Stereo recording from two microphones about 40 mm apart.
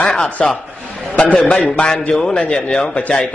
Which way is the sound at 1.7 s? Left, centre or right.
Centre.